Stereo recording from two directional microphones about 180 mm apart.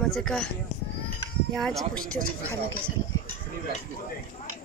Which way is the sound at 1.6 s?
5° left (ahead or behind).